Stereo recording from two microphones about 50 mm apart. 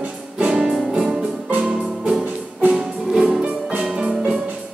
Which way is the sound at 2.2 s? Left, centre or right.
Right.